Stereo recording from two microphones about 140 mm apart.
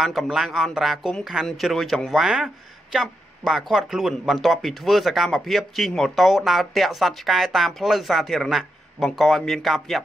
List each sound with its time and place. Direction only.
0.0 s speech: centre (ahead or behind)